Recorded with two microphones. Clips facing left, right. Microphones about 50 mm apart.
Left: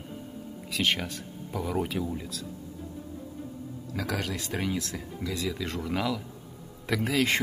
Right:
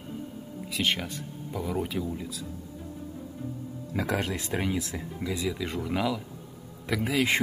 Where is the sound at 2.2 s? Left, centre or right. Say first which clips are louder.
Right 1 dB; centre.